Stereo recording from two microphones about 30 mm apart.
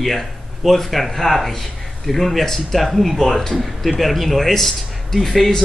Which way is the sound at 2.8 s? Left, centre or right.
Centre.